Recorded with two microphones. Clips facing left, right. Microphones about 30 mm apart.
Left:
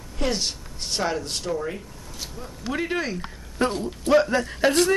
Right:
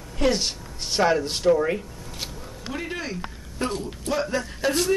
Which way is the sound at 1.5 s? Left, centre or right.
Right.